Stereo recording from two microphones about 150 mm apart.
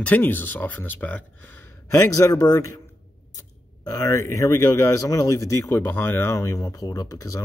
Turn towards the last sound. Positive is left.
turn(degrees=20)  # may be behind; listen again after turning